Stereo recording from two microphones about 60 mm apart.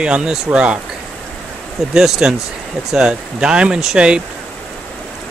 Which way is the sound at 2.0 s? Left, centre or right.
Centre.